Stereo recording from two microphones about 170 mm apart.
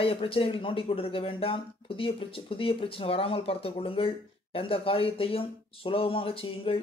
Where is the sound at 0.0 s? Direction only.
30° left (ahead or behind).